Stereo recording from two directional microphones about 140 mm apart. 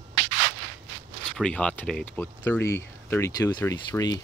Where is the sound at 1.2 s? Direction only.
10° left (ahead or behind); by 4.2 s 25° left (ahead or behind).